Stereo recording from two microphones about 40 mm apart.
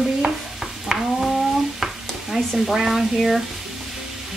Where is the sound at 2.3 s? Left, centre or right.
Centre.